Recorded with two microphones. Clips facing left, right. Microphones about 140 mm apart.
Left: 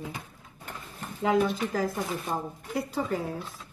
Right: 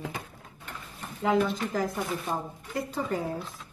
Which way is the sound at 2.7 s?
Centre (ahead or behind).